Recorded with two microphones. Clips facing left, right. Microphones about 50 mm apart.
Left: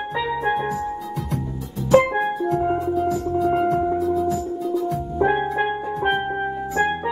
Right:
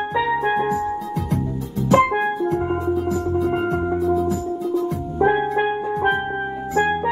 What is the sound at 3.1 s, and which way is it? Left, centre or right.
Music, right.